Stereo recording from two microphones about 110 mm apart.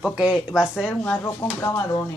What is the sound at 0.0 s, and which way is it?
Speech, 5° right (ahead or behind).